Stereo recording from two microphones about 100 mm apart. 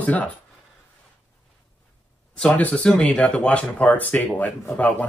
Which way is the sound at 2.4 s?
10° left (ahead or behind).